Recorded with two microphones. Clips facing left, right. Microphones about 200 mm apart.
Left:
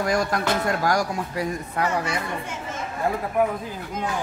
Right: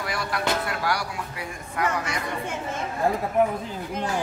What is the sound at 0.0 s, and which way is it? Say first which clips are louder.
Speech: left 5 dB; 45° left (ahead or behind).